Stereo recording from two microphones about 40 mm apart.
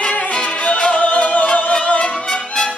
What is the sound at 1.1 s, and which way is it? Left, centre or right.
Music, left.